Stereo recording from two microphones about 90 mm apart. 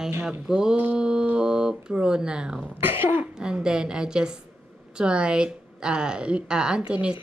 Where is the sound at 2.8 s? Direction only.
25° right (ahead or behind).